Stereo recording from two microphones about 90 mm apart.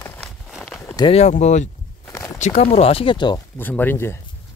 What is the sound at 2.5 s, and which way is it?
Speech, 90° left.